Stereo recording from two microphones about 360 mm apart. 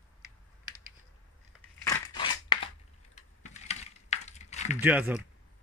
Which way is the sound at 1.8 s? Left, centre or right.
Centre.